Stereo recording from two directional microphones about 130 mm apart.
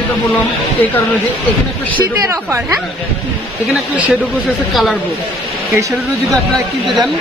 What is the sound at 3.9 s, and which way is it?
Speech, 10° right (ahead or behind).